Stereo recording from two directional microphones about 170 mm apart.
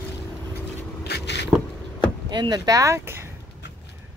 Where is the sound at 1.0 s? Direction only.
80° left.